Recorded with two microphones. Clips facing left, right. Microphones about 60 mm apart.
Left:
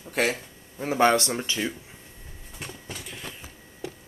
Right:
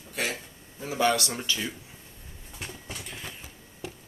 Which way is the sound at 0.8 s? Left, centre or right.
Left.